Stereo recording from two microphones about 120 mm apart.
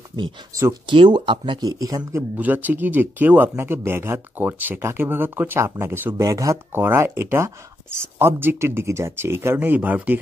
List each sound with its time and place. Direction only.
0.8 s speech: 40° right (ahead or behind)
2.3 s speech: 15° right (ahead or behind)